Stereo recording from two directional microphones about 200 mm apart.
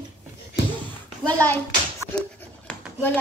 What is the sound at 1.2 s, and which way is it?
Speech, 10° left (ahead or behind).